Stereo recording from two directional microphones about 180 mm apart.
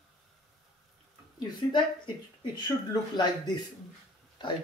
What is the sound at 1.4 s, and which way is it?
A woman's voice, 25° left (ahead or behind).